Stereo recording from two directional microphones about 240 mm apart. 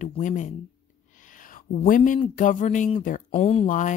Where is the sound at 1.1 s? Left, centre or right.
Left.